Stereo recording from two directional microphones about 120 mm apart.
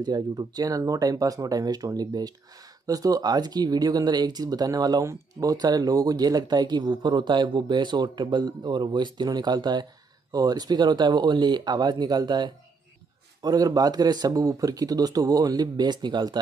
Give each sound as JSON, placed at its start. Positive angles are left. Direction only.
{"t": 0.0, "sound": "speech", "side_deg": -35}